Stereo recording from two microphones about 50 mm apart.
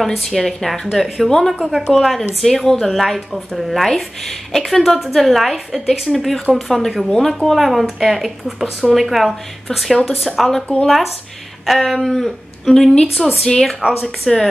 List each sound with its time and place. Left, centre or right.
0.2 s speech: centre
1.6 s a woman's voice: centre
2.0 s speech: centre
11.6 s speech: centre